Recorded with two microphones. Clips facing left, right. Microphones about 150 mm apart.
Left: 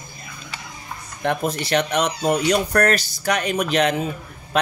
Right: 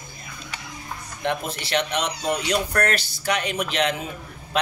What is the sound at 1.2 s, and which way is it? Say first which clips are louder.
Speech: left 4 dB; 45° left (ahead or behind).